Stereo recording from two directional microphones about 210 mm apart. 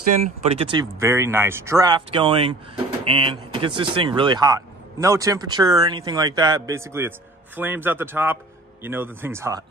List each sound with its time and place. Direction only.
0.5 s speech: 25° right (ahead or behind)